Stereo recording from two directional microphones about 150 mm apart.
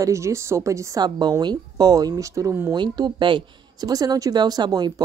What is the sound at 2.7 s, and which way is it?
Speech, 30° right (ahead or behind).